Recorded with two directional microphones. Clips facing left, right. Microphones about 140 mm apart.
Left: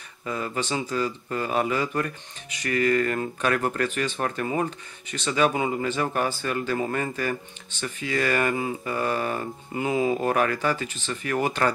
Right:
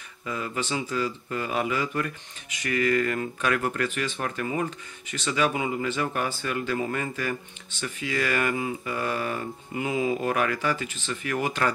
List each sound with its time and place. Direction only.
0.2 s speech: 35° left (ahead or behind)